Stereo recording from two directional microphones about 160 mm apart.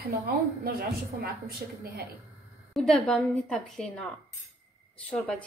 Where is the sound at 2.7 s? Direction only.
5° left (ahead or behind).